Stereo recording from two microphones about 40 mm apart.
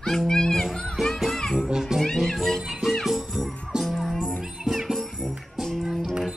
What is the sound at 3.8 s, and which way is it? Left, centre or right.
Music, centre.